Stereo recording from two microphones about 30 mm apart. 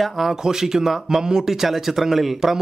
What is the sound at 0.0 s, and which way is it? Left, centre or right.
Speech, centre.